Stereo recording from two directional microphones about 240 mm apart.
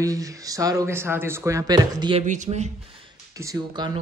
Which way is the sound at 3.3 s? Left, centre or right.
Centre.